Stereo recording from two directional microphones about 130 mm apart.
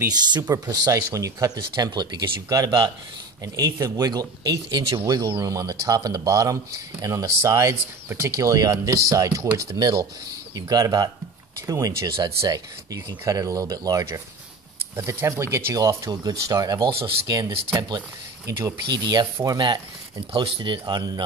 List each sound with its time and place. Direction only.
0.3 s speech: 30° right (ahead or behind)